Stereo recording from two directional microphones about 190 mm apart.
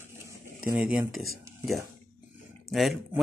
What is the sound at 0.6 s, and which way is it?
Speech, 5° right (ahead or behind).